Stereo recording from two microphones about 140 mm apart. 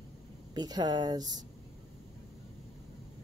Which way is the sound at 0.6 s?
30° right (ahead or behind).